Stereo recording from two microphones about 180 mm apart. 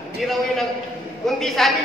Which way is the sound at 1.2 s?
Centre (ahead or behind).